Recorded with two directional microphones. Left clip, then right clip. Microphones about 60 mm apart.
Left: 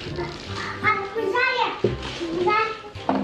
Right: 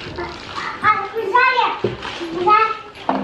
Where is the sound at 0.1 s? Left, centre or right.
Right.